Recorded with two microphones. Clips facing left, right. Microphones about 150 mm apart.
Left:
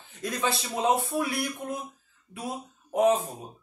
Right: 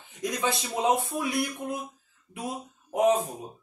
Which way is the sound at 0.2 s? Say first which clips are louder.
Right 1 dB; 20° right (ahead or behind).